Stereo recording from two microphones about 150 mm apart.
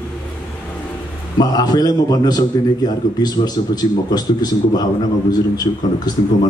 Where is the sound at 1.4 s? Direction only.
25° left (ahead or behind).